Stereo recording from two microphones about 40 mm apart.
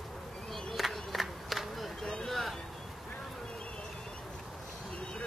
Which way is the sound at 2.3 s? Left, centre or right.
Centre.